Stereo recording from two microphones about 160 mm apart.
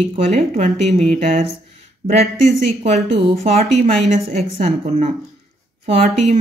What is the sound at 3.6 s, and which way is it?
Speech, 45° right (ahead or behind).